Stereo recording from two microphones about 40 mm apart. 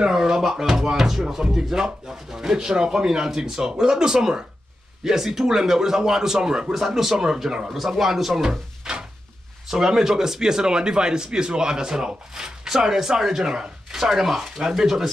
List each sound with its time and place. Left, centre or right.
0.0 s a man's voice: centre
8.8 s a sound: centre
9.7 s a man's voice: centre